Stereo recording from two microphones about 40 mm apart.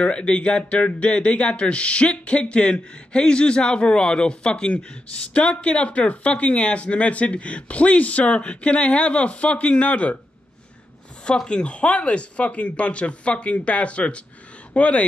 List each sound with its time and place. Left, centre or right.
0.0 s speech: left
11.4 s speech: left